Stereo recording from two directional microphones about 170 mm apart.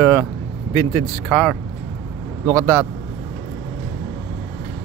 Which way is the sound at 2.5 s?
10° left (ahead or behind).